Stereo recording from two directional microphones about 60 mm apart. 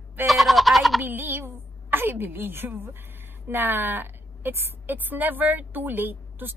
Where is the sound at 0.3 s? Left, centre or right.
Centre.